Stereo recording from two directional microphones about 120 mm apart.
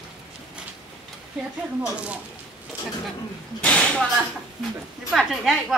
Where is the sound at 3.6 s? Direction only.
10° left (ahead or behind).